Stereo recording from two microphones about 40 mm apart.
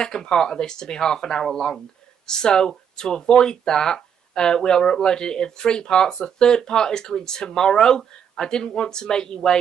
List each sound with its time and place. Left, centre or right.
0.0 s speech: centre